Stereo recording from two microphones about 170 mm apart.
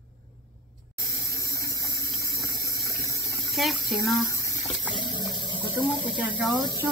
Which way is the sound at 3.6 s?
Centre (ahead or behind).